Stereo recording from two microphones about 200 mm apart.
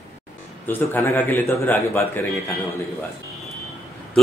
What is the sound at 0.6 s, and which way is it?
A man's voice, 10° left (ahead or behind).